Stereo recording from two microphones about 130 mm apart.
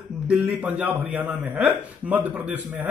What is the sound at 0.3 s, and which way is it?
Speech, 10° right (ahead or behind).